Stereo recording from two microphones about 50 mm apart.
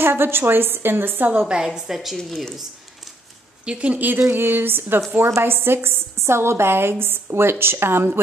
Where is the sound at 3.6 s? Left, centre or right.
Right.